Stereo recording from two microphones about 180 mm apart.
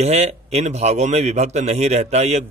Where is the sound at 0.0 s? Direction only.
35° right (ahead or behind).